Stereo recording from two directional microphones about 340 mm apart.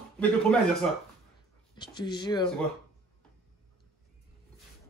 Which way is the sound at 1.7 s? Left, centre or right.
Centre.